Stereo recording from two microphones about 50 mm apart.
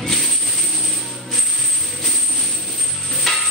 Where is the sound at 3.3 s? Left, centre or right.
Centre.